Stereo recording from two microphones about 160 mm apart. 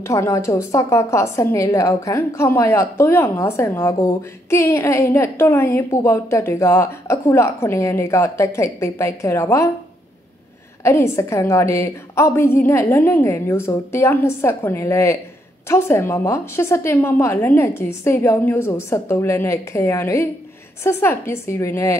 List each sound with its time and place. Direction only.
0.0 s a woman's voice: 20° left (ahead or behind)
10.8 s a woman's voice: 15° left (ahead or behind)